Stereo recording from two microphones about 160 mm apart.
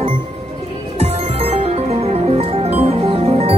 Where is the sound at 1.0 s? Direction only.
35° right (ahead or behind).